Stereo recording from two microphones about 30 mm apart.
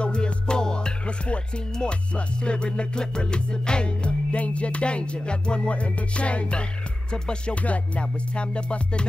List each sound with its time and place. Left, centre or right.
0.0 s music: left
1.0 s music: left
7.5 s music: left
8.0 s music: left